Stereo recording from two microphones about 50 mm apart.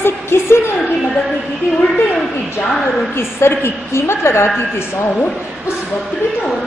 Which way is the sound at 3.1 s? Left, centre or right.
Left.